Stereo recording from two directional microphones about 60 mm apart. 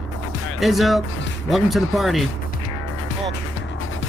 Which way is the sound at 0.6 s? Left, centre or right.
Centre.